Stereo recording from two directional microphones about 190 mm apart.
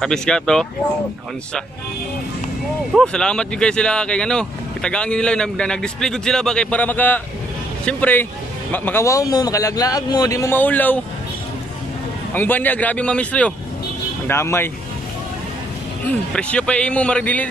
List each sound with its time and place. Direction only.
0.0 s speech: 5° left (ahead or behind)
2.9 s a man's voice: 5° left (ahead or behind)
12.4 s a man's voice: 10° left (ahead or behind)
16.3 s speech: 5° left (ahead or behind)